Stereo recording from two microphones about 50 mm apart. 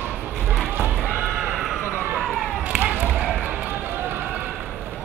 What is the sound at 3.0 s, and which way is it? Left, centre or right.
Run, right.